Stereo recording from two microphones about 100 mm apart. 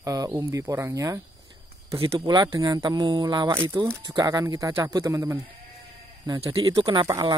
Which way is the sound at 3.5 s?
25° right (ahead or behind).